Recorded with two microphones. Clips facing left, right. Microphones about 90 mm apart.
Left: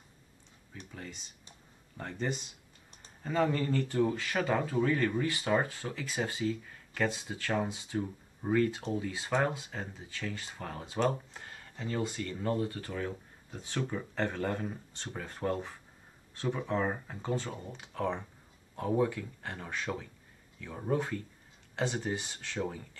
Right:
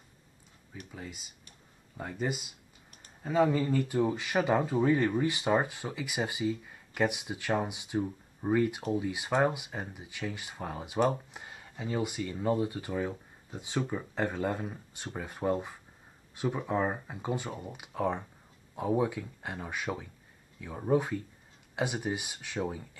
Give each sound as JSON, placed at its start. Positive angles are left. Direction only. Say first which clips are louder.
{"t": 0.9, "sound": "speech", "louder": "right 1 dB", "side_deg": -5}